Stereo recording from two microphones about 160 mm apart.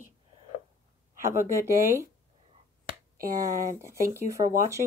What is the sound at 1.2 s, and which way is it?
Speech, 20° right (ahead or behind).